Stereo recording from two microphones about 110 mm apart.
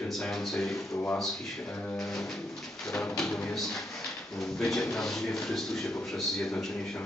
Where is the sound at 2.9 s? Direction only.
5° left (ahead or behind).